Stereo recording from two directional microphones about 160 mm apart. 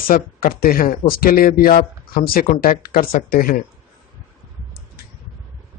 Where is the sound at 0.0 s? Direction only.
65° left (ahead or behind).